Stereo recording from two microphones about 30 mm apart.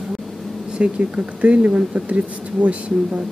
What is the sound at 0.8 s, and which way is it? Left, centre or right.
Speech, right.